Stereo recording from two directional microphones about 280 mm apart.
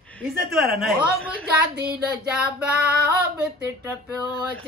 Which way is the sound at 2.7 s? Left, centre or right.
Right.